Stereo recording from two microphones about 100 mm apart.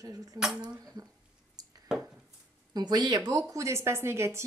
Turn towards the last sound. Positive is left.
turn(degrees=-25)  # may be behind; listen again after turning